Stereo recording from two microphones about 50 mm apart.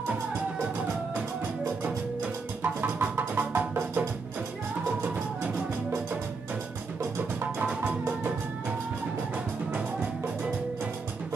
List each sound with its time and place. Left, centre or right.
2.6 s music: right
5.0 s music: right